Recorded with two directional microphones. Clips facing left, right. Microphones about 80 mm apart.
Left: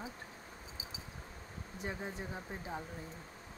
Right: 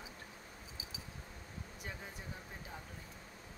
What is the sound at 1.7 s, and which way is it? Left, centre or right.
Speech, left.